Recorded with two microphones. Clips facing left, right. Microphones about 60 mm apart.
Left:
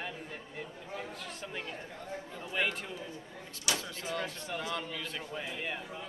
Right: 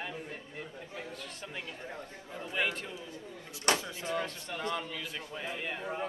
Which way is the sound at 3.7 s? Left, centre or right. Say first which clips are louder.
Right 5 dB; right.